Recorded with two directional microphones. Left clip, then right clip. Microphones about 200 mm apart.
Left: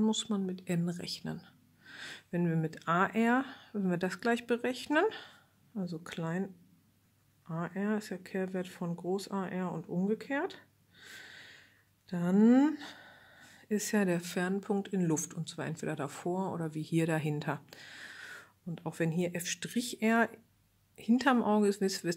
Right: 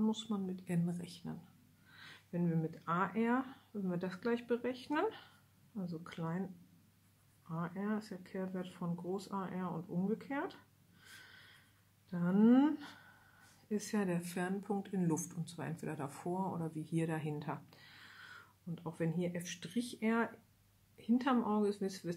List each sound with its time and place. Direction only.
0.0 s speech: 35° left (ahead or behind)
11.1 s snort: 35° left (ahead or behind)
12.1 s speech: 35° left (ahead or behind)